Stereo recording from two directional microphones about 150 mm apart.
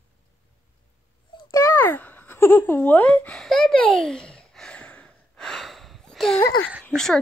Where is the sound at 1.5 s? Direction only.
20° left (ahead or behind); by 6.4 s centre (ahead or behind).